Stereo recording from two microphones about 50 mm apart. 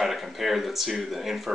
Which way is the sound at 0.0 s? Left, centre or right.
Centre.